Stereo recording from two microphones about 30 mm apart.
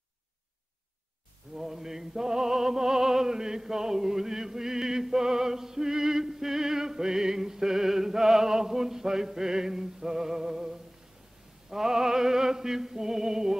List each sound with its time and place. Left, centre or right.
1.5 s music: centre
3.3 s chant: centre
11.7 s music: centre